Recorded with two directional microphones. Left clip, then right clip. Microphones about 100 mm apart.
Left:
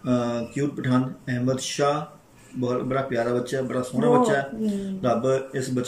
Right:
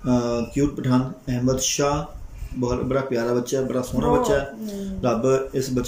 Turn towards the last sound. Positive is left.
turn(degrees=-20)  # may be behind; listen again after turning